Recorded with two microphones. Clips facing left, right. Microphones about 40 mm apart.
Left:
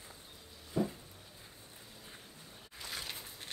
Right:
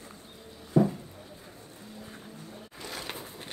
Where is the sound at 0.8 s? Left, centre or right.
Centre.